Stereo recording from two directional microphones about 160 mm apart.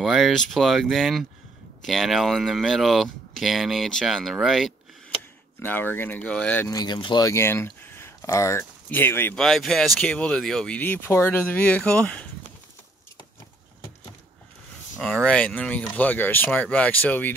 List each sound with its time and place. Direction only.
0.0 s speech: centre (ahead or behind)
5.6 s speech: 10° left (ahead or behind)
6.7 s speech: 25° left (ahead or behind)
9.4 s speech: centre (ahead or behind)
15.2 s speech: 5° left (ahead or behind)